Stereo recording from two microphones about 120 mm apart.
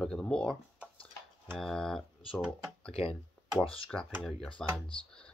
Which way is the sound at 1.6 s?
5° left (ahead or behind).